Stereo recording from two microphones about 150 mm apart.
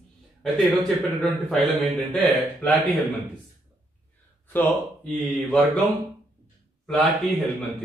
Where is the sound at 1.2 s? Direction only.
Centre (ahead or behind).